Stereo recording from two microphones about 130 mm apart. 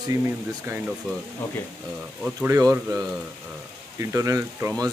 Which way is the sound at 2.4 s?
25° right (ahead or behind).